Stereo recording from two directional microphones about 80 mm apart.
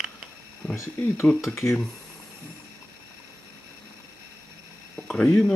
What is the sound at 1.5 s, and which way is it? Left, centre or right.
Speech, left.